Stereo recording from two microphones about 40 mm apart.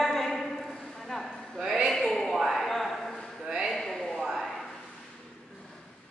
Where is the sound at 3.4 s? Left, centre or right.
Centre.